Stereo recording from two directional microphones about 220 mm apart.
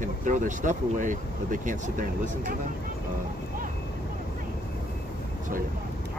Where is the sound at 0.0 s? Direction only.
35° right (ahead or behind).